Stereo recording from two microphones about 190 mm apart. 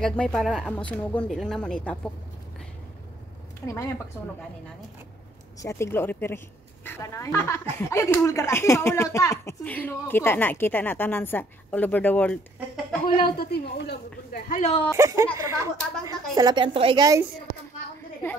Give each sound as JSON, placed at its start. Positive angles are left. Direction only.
{"t": 0.0, "sound": "speech", "side_deg": 5}
{"t": 3.6, "sound": "speech", "side_deg": 15}
{"t": 5.6, "sound": "speech", "side_deg": 15}
{"t": 13.2, "sound": "speech", "side_deg": 55}
{"t": 14.6, "sound": "speech", "side_deg": 30}
{"t": 15.0, "sound": "a woman's voice", "side_deg": -15}